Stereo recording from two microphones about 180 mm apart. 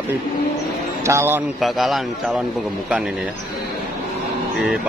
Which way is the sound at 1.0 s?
15° right (ahead or behind).